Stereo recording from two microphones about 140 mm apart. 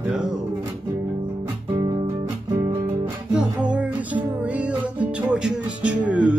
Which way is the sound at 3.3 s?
5° right (ahead or behind).